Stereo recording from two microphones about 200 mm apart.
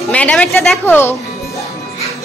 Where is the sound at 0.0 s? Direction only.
5° left (ahead or behind).